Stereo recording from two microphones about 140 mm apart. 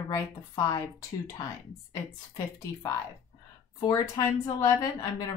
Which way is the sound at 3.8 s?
30° left (ahead or behind).